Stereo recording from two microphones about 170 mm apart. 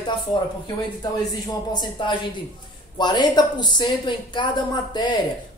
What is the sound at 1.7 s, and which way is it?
Speech, 25° left (ahead or behind).